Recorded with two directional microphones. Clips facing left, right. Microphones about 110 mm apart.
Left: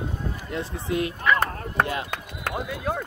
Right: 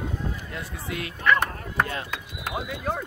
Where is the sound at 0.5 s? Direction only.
25° left (ahead or behind).